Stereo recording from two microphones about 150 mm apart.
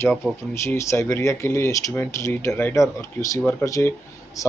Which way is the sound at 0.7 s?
20° left (ahead or behind).